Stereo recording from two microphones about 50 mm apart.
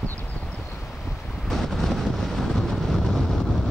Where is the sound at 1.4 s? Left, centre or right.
Centre.